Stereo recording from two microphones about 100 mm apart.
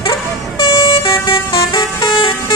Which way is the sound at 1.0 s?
60° left (ahead or behind).